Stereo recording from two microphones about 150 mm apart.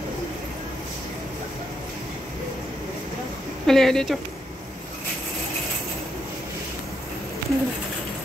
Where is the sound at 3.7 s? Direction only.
Centre (ahead or behind).